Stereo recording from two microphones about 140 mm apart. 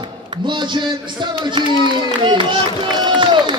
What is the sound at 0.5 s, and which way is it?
Speech, 35° right (ahead or behind).